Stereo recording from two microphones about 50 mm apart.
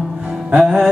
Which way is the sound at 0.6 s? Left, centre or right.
Centre.